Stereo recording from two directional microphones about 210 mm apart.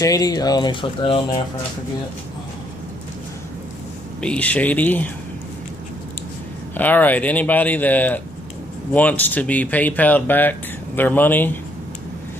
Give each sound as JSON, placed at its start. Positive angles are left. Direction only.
{"t": 0.0, "sound": "speech", "side_deg": 15}
{"t": 4.2, "sound": "speech", "side_deg": 5}
{"t": 6.7, "sound": "speech", "side_deg": 10}